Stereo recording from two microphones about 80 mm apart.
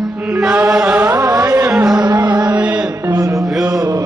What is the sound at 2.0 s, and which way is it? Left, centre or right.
Music, right.